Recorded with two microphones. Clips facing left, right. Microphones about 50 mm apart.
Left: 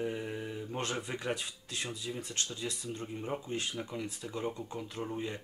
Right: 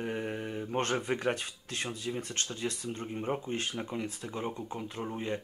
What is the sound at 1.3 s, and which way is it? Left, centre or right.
Speech, right.